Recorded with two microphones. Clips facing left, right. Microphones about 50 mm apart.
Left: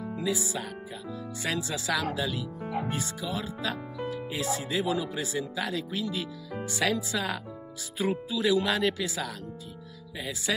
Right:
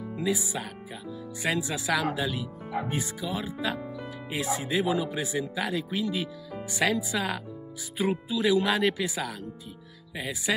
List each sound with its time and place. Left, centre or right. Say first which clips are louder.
0.2 s speech: right 2 dB; centre